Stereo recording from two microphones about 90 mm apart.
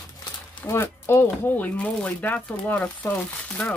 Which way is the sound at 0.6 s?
30° left (ahead or behind).